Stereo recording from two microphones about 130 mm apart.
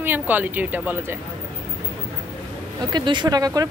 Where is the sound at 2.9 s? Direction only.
35° right (ahead or behind).